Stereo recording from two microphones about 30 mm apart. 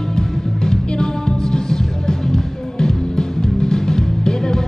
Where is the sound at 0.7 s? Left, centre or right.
Left.